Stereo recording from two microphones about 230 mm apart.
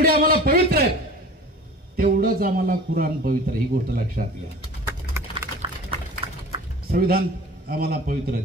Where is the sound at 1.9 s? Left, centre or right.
Right.